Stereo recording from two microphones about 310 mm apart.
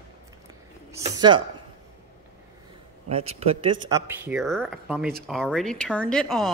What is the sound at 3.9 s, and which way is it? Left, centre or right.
Speech, centre.